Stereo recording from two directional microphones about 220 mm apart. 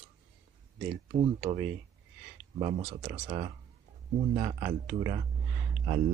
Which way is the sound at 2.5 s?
25° right (ahead or behind).